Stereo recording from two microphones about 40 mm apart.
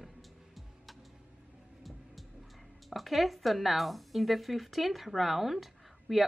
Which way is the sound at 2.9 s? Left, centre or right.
Centre.